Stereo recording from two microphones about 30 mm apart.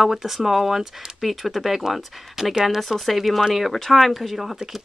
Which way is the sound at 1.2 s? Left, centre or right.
Centre.